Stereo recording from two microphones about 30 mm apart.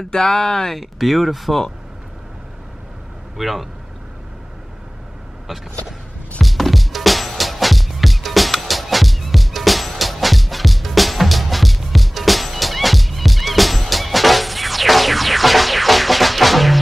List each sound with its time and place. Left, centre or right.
0.1 s speech: left
0.9 s speech: centre
3.3 s speech: centre
6.4 s music: centre